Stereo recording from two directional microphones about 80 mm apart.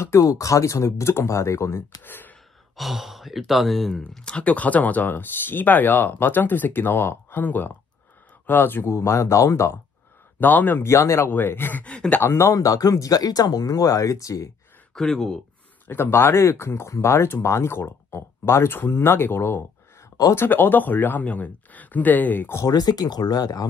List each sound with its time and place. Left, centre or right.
0.0 s speech: left
2.0 s gasp: left
2.7 s speech: centre
4.2 s speech: centre; by 9.8 s left
10.4 s speech: left
10.8 s speech: left; by 12.2 s centre
12.2 s speech: left
12.5 s speech: left
15.0 s speech: centre
15.9 s speech: left
22.7 s speech: left